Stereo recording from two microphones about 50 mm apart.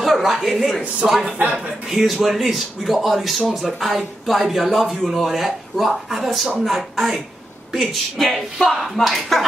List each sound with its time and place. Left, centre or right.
0.0 s speech: centre
1.0 s a man's voice: centre